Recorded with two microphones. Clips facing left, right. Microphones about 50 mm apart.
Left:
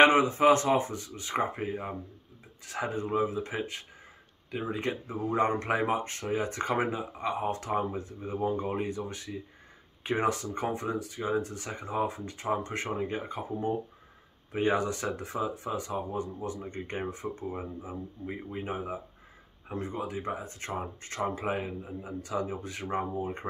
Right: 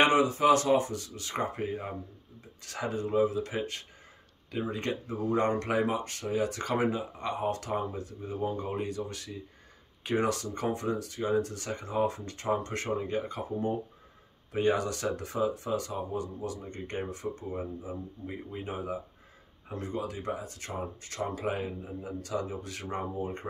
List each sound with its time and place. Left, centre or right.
0.0 s speech: left
7.2 s speech: centre